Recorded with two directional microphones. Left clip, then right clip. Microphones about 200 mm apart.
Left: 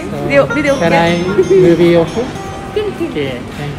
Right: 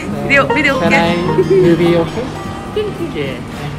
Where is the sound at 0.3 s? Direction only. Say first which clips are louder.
Even; 10° left (ahead or behind).